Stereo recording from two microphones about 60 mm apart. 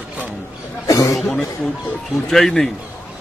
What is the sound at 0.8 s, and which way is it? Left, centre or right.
Speech, left.